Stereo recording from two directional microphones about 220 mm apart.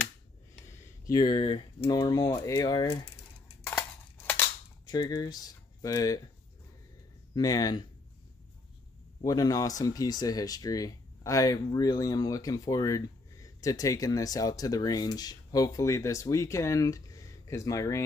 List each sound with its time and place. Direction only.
0.7 s speech: 15° left (ahead or behind)
4.9 s speech: 20° left (ahead or behind)
7.3 s speech: 15° left (ahead or behind)
9.2 s speech: 15° left (ahead or behind)